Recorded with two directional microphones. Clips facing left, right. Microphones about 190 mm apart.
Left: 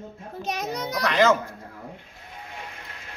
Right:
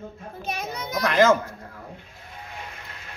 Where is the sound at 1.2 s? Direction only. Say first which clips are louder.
Right 2 dB; centre (ahead or behind).